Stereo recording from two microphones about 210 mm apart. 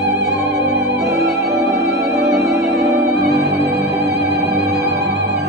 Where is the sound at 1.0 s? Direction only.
15° right (ahead or behind).